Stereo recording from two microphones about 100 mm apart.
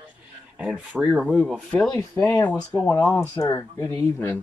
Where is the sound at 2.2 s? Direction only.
40° left (ahead or behind).